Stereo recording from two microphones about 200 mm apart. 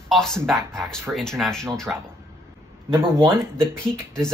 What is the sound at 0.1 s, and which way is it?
Speech, centre (ahead or behind).